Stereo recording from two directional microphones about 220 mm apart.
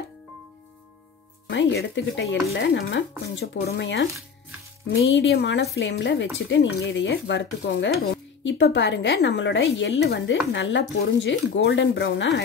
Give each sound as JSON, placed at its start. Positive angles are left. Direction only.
{"t": 1.5, "sound": "a woman's voice", "side_deg": 55}
{"t": 5.1, "sound": "a woman's voice", "side_deg": 55}